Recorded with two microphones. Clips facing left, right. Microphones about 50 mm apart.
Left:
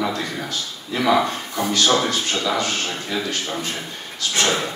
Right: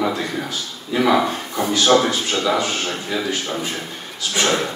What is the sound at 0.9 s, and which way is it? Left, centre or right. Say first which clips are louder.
A man's voice: right 2 dB; centre.